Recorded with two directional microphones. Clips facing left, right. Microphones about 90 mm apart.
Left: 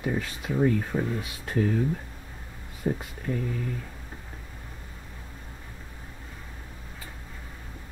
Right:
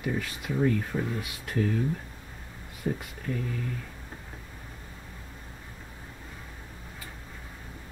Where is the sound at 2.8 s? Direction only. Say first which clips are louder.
Left 3 dB; 30° left (ahead or behind).